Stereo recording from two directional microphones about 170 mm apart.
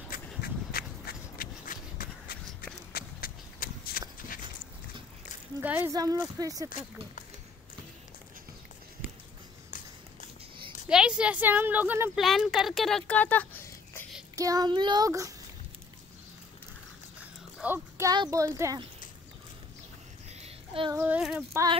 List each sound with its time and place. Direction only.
0.1 s a sound: 60° left (ahead or behind)
5.6 s speech: 10° right (ahead or behind)
6.7 s speech: 50° left (ahead or behind)
10.9 s a woman's voice: 5° right (ahead or behind)
12.2 s speech: centre (ahead or behind)
14.3 s speech: 20° right (ahead or behind)
17.6 s speech: 10° right (ahead or behind)
20.4 s child singing: 30° right (ahead or behind)
20.9 s a woman's voice: 15° right (ahead or behind)
21.2 s a sound: centre (ahead or behind)